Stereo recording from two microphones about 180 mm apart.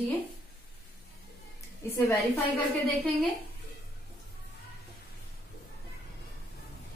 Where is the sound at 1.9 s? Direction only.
15° left (ahead or behind).